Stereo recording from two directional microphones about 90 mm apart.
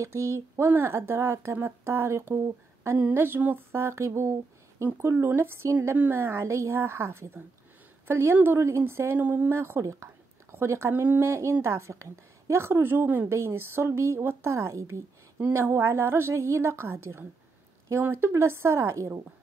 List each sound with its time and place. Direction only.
0.0 s a woman's voice: 30° right (ahead or behind)